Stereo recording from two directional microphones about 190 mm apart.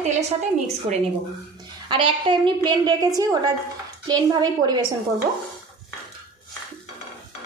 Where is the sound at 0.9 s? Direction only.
35° right (ahead or behind).